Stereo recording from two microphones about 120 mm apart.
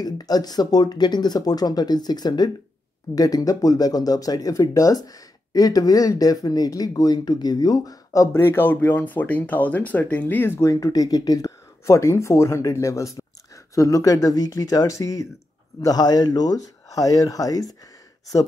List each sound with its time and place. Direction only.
0.0 s speech: 35° left (ahead or behind)
8.3 s speech: 20° left (ahead or behind)